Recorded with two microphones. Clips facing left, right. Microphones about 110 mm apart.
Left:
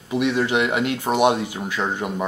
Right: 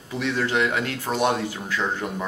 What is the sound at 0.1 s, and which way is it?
Speech, 15° left (ahead or behind).